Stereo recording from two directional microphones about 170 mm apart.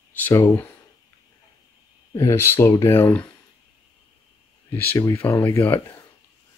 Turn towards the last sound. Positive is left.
turn(degrees=10)  # may be behind; listen again after turning